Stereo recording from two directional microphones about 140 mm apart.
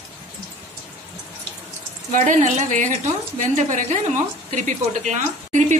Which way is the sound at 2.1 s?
60° right (ahead or behind).